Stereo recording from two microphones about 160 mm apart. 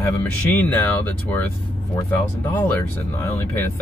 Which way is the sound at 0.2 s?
10° left (ahead or behind).